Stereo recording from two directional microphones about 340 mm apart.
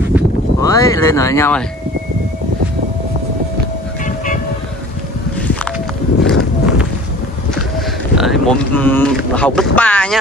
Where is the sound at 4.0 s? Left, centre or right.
Left.